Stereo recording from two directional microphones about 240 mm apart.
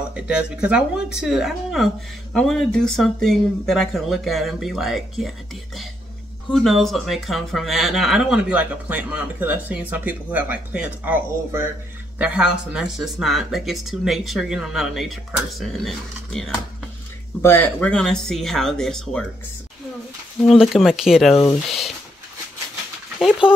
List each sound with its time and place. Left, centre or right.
0.1 s speech: centre
20.4 s speech: centre